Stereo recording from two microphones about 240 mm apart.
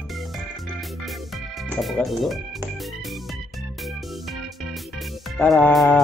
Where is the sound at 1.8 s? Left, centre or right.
Centre.